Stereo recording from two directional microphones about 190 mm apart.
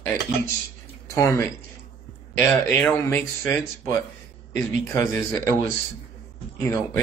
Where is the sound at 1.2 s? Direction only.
15° left (ahead or behind).